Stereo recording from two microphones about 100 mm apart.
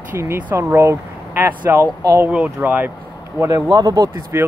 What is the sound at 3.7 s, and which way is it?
Speech, 40° right (ahead or behind).